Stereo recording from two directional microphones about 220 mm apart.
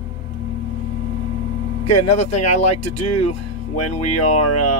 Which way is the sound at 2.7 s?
90° left.